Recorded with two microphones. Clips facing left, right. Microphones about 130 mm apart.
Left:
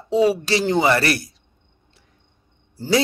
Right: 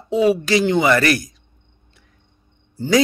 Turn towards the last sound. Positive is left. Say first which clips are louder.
# right 3 dB
turn(degrees=35)  # may be behind; listen again after turning